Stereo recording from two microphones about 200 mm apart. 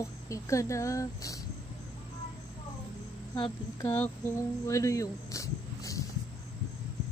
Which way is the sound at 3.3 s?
15° left (ahead or behind).